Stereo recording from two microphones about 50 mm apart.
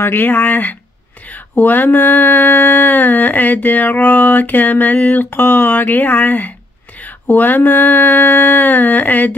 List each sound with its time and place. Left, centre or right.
0.0 s mantra: left